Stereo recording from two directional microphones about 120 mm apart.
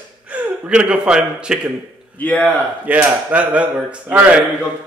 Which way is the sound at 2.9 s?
10° right (ahead or behind).